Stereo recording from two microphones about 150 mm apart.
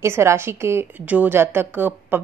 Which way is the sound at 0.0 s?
15° right (ahead or behind).